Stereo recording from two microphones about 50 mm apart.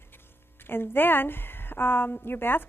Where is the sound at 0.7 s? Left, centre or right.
Left.